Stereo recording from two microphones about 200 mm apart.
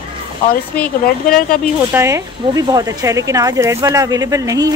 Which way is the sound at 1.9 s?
15° right (ahead or behind).